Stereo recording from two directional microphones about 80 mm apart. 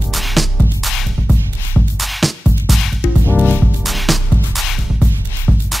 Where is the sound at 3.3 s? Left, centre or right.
Left.